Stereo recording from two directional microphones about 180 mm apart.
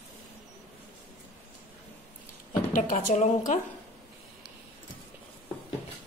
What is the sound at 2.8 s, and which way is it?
Speech, 40° left (ahead or behind).